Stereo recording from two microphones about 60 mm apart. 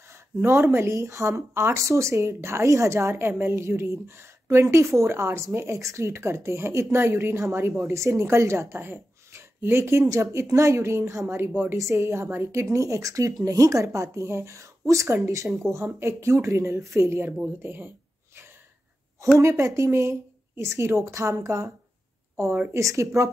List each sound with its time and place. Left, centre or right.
0.1 s speech: right
10.3 s speech: right
12.6 s speech: right
17.6 s a sound: right
19.3 s speech: right
22.8 s speech: right